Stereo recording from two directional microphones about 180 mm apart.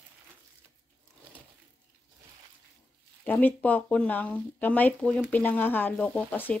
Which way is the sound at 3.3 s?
10° left (ahead or behind).